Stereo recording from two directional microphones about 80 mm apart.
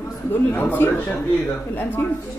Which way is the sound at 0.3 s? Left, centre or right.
Left.